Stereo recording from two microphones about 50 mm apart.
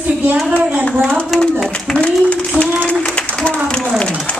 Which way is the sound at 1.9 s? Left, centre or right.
Left.